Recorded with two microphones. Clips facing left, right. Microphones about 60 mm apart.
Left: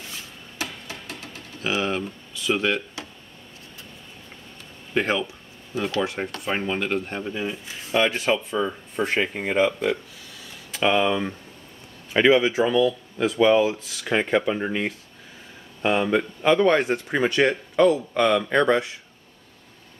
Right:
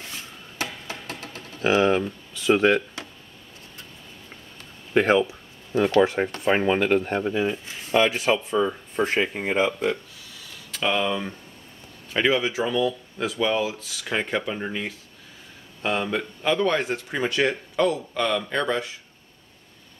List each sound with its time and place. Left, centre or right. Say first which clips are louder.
1.0 s a sound: right 2 dB; right
4.9 s speech: right 5 dB; right
7.1 s speech: right 5 dB; centre
7.9 s speech: right 1 dB; centre
10.8 s a man's voice: left 3 dB; centre
18.3 s speech: left 6 dB; centre